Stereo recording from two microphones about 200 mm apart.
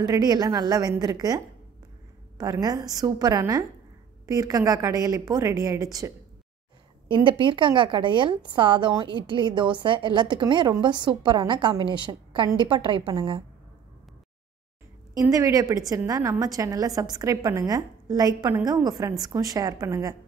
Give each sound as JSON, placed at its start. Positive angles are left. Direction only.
{"t": 0.0, "sound": "a woman's voice", "side_deg": -20}
{"t": 2.6, "sound": "a woman's voice", "side_deg": -20}
{"t": 15.1, "sound": "a woman's voice", "side_deg": -15}